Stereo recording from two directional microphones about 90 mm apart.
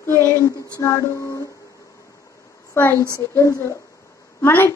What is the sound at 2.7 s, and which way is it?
A woman's voice, 25° left (ahead or behind).